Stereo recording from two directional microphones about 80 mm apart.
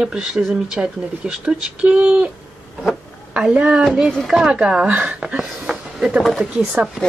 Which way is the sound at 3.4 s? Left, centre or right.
Centre.